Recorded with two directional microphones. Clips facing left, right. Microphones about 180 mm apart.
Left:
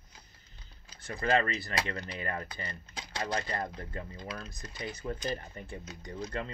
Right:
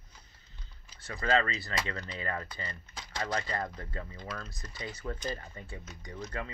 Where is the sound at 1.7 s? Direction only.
20° left (ahead or behind).